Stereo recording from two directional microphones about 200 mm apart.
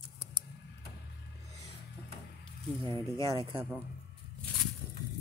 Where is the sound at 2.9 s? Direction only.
15° left (ahead or behind).